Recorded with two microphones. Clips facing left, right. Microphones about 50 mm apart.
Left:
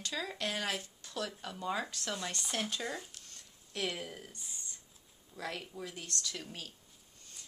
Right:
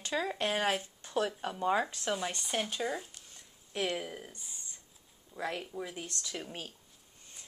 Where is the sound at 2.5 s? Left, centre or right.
Centre.